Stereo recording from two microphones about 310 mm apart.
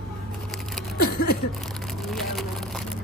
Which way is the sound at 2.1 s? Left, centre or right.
Centre.